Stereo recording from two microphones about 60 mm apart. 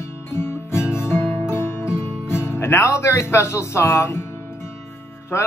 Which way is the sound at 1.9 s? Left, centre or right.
Left.